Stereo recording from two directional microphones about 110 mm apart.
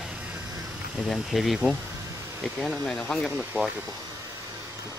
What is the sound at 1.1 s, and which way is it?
Speech, centre (ahead or behind).